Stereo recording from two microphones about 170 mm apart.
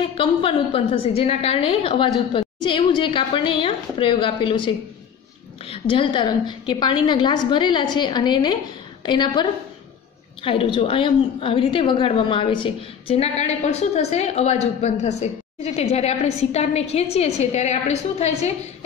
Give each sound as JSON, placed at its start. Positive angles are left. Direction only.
{"t": 0.1, "sound": "a woman's voice", "side_deg": 30}
{"t": 5.7, "sound": "a woman's voice", "side_deg": 30}